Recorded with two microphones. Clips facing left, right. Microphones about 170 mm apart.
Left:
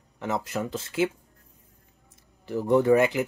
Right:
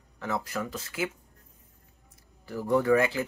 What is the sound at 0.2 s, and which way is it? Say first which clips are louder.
Speech: left 3 dB; 20° left (ahead or behind).